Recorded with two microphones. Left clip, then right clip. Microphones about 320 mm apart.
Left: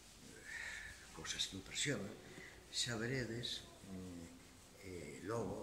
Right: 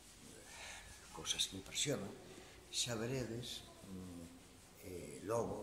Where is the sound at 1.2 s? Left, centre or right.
Centre.